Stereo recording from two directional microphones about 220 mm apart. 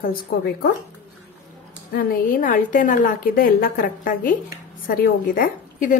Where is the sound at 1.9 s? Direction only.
40° left (ahead or behind).